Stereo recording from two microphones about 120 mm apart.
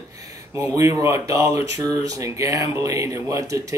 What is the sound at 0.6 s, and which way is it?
Speech, 25° right (ahead or behind).